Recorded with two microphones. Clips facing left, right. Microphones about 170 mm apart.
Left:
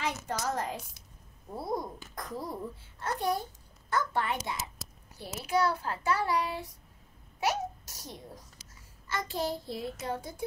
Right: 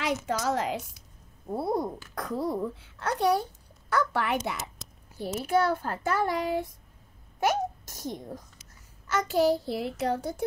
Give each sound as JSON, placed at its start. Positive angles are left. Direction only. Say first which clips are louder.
{"t": 0.0, "sound": "a woman's voice", "louder": "right 5 dB", "side_deg": -90}
{"t": 1.5, "sound": "a child's voice", "louder": "right 6 dB", "side_deg": -60}
{"t": 5.2, "sound": "a child's voice", "louder": "right 4 dB", "side_deg": -50}
{"t": 9.1, "sound": "a child's voice", "louder": "right 9 dB", "side_deg": -80}